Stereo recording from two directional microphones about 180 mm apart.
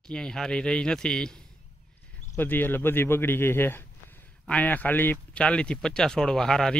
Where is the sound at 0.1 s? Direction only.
5° left (ahead or behind).